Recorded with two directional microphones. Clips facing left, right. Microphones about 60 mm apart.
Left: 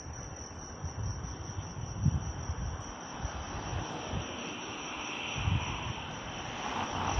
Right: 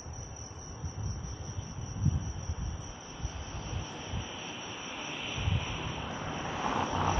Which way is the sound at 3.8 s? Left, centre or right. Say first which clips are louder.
Left 3 dB; left.